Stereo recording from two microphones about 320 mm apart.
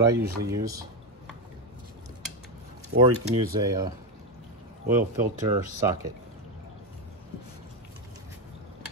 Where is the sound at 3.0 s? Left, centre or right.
Centre.